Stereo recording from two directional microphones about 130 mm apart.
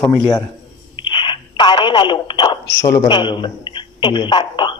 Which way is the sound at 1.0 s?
40° left (ahead or behind).